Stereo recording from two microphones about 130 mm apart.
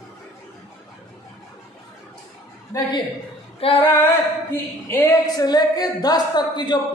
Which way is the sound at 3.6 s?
45° left (ahead or behind).